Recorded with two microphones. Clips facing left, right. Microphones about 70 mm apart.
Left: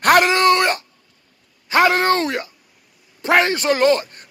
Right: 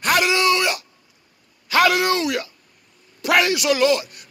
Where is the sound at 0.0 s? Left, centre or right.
Left.